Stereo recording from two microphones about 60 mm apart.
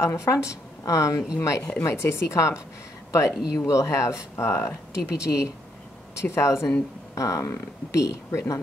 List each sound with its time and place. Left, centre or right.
0.0 s a woman's voice: left
7.2 s speech: left